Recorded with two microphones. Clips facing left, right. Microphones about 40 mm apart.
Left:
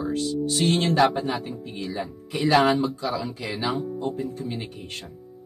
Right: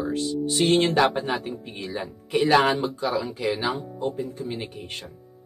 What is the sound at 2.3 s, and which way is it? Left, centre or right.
Speech, right.